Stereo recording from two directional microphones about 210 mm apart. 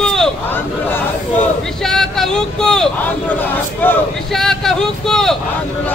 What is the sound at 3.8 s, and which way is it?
Speech, 5° left (ahead or behind).